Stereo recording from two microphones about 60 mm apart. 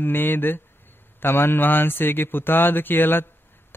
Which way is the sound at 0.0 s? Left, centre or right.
Left.